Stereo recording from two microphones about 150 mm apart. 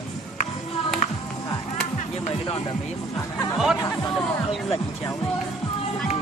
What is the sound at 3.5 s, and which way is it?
Music, centre (ahead or behind).